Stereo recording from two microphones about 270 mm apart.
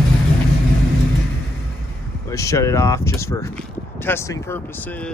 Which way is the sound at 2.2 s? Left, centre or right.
Centre.